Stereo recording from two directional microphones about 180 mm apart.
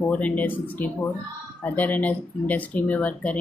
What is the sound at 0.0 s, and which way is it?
Speech, 10° left (ahead or behind).